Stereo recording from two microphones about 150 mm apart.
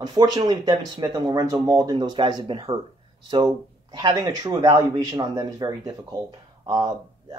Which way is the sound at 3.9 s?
30° right (ahead or behind).